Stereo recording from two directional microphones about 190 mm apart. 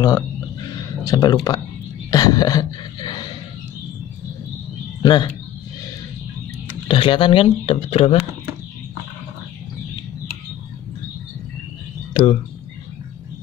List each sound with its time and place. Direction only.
1.0 s speech: 20° left (ahead or behind)
2.0 s gasp: 20° left (ahead or behind)
5.0 s speech: 25° left (ahead or behind)
6.9 s speech: 25° left (ahead or behind)
12.1 s a sound: 25° left (ahead or behind)